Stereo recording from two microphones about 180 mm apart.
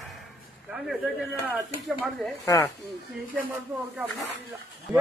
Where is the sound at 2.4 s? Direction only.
20° left (ahead or behind).